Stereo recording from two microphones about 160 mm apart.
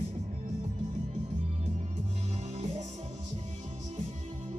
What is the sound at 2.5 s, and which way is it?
Music, 45° right (ahead or behind).